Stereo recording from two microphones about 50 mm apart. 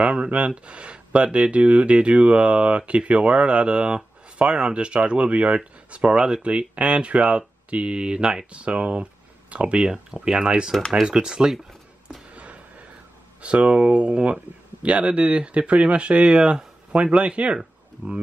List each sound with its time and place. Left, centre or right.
0.0 s speech: right
10.7 s speech: centre
11.1 s speech: centre
12.3 s a sound: right
13.4 s speech: right